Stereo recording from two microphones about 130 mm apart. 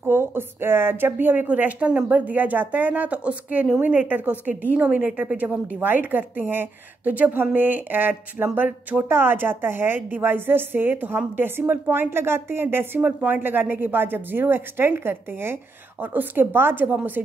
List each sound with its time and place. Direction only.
0.0 s speech: 15° right (ahead or behind)